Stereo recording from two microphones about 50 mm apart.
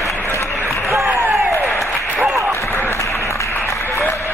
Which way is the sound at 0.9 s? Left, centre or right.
Right.